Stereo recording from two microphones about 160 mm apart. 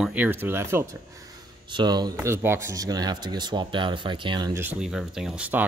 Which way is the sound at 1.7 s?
25° right (ahead or behind).